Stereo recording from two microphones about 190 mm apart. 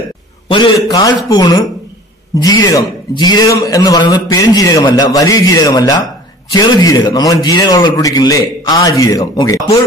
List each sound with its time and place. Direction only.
0.8 s a man's voice: 20° left (ahead or behind)